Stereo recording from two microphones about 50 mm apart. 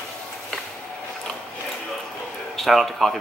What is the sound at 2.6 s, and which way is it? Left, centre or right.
Speech, centre.